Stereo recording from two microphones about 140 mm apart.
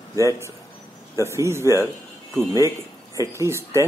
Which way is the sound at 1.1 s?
20° right (ahead or behind).